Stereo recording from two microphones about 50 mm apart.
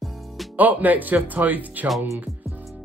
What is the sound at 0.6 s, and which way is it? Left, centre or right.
Music, right.